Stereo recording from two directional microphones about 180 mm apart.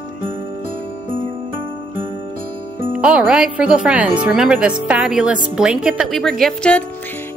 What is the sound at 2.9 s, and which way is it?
Speech, 5° right (ahead or behind).